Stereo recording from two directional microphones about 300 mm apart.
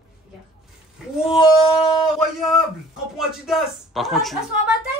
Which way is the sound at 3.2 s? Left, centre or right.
Centre.